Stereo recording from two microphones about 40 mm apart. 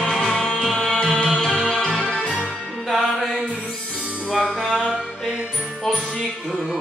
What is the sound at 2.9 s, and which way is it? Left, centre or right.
Music, centre.